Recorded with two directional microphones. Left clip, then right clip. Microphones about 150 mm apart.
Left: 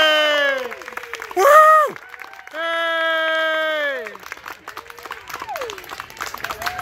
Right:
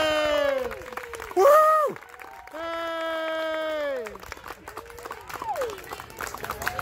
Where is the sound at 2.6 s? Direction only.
Centre (ahead or behind).